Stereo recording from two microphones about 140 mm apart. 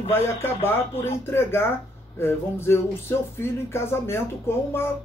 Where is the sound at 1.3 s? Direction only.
15° left (ahead or behind).